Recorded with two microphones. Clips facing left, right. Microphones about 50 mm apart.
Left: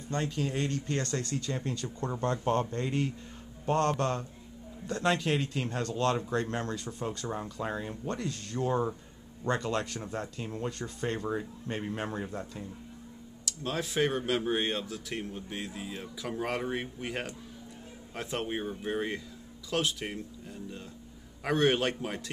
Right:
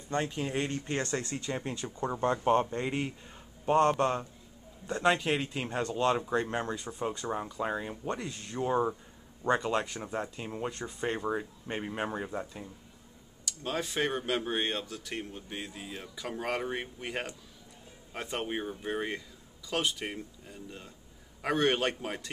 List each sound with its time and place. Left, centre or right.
0.1 s speech: right; by 22.3 s centre